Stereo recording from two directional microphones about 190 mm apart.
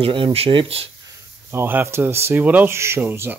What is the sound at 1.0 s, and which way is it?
Speech, 10° right (ahead or behind).